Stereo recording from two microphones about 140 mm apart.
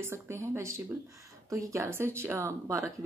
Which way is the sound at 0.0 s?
15° right (ahead or behind).